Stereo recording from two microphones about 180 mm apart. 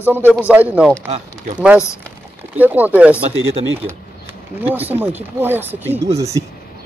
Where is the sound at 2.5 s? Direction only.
10° right (ahead or behind).